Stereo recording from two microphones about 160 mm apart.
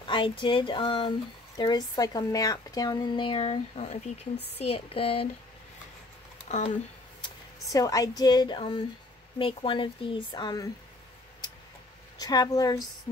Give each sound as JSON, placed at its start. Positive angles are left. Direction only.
{"t": 0.0, "sound": "speech", "side_deg": 30}
{"t": 7.2, "sound": "speech", "side_deg": 20}
{"t": 12.2, "sound": "speech", "side_deg": 25}